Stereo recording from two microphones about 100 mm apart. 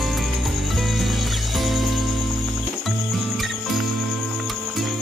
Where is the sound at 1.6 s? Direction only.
Centre (ahead or behind).